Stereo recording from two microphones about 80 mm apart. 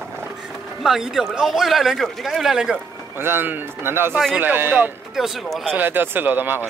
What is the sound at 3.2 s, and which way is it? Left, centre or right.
Speech, right.